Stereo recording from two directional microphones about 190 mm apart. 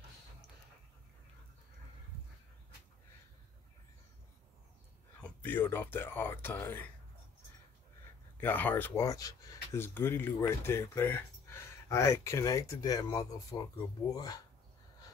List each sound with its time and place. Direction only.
5.2 s speech: 10° left (ahead or behind)
8.4 s speech: 10° left (ahead or behind)